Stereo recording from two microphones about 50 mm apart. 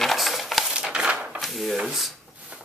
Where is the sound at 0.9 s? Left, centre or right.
Centre.